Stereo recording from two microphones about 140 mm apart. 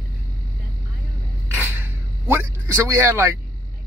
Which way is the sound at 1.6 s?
15° right (ahead or behind).